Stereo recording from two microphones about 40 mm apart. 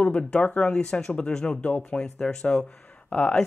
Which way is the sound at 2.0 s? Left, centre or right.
Centre.